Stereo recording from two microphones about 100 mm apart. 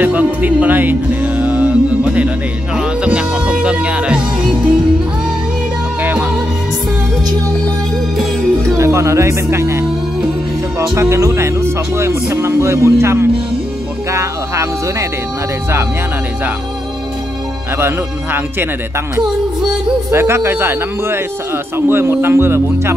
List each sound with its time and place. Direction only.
0.0 s music: 15° right (ahead or behind)
6.0 s music: 10° right (ahead or behind)
8.6 s speech: 30° right (ahead or behind)
11.0 s speech: 30° right (ahead or behind)
17.7 s speech: 25° right (ahead or behind)
20.1 s speech: 25° right (ahead or behind)